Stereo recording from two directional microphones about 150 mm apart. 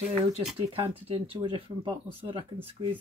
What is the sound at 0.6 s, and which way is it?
Speech, 35° right (ahead or behind).